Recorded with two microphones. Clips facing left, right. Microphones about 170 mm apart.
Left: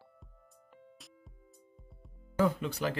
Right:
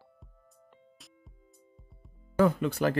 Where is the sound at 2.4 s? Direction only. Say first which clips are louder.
Right 5 dB; 55° right (ahead or behind).